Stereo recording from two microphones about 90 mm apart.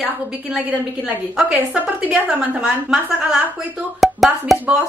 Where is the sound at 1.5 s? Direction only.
15° right (ahead or behind); by 4.6 s centre (ahead or behind).